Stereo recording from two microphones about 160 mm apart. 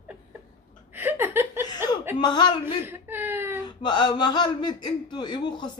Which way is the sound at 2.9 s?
15° right (ahead or behind).